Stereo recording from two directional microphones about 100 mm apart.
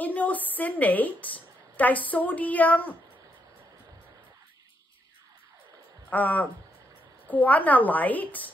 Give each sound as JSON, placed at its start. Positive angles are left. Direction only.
{"t": 0.0, "sound": "a woman's voice", "side_deg": 15}
{"t": 6.0, "sound": "a woman's voice", "side_deg": 15}